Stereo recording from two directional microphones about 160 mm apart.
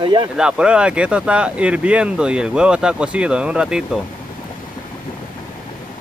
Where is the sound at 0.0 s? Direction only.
30° right (ahead or behind).